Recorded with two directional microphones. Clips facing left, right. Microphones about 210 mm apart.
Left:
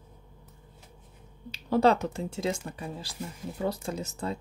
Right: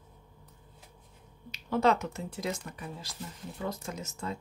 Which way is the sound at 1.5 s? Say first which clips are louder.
Left 4 dB; 35° left (ahead or behind).